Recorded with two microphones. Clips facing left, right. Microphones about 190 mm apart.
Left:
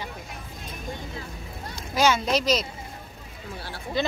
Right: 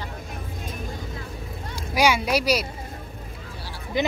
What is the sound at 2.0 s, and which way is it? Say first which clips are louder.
Speech: right 1 dB; 10° right (ahead or behind).